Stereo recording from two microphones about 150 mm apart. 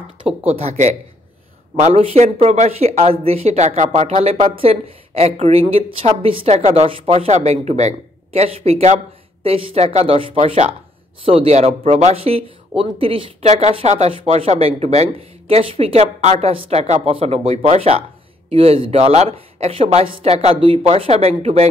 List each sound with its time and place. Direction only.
0.5 s speech: 45° right (ahead or behind)